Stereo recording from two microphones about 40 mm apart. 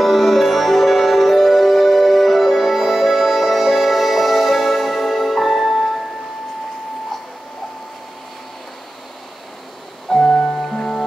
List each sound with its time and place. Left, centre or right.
0.0 s music: centre
10.0 s music: centre